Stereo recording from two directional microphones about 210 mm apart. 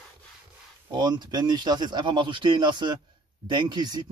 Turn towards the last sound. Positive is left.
turn(degrees=-20)  # may be behind; listen again after turning